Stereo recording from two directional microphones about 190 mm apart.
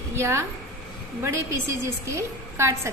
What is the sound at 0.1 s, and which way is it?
A woman's voice, 15° right (ahead or behind).